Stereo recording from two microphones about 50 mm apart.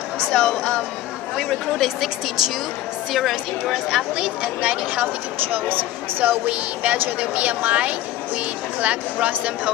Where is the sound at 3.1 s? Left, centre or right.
Centre.